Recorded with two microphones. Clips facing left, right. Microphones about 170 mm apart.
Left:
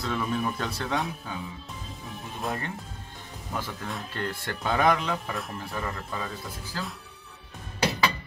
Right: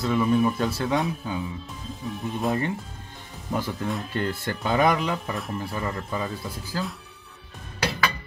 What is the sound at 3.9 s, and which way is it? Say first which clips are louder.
Speech: right 4 dB; centre (ahead or behind).